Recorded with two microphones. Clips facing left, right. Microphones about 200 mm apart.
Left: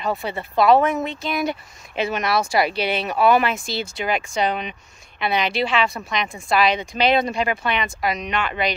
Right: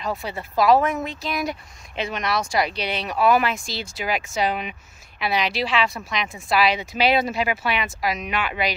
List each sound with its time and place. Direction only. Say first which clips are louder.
0.0 s speech: left 3 dB; centre (ahead or behind)